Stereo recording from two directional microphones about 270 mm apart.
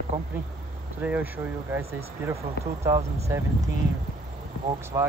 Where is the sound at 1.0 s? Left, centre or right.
Centre.